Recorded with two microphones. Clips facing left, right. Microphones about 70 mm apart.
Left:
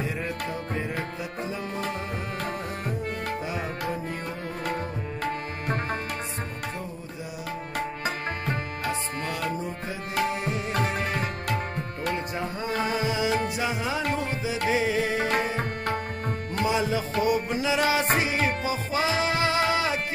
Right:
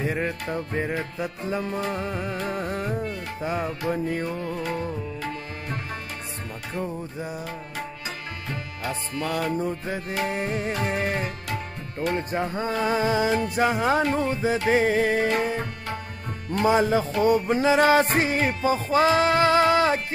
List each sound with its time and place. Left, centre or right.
0.0 s music: right
2.2 s music: left
2.5 s music: right
3.9 s music: right
4.3 s music: left
7.7 s music: left
9.3 s music: right
10.7 s music: left
12.1 s music: right
15.1 s music: left
16.6 s music: right